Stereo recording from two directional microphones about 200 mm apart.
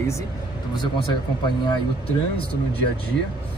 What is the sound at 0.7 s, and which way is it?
Speech, 25° left (ahead or behind).